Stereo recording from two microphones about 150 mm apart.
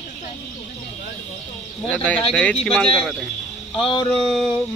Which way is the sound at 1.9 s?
10° left (ahead or behind).